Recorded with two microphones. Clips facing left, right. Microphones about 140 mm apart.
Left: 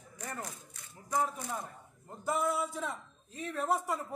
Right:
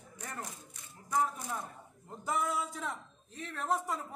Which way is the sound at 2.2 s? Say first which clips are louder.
Left 2 dB; centre (ahead or behind).